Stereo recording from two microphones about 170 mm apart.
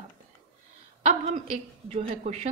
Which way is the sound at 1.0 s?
40° right (ahead or behind).